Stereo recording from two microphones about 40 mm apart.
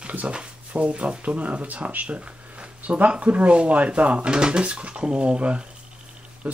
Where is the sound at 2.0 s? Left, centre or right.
Right.